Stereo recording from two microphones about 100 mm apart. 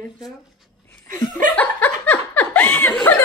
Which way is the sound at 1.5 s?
15° left (ahead or behind).